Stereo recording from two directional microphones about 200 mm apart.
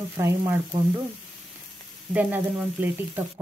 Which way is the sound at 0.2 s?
15° right (ahead or behind).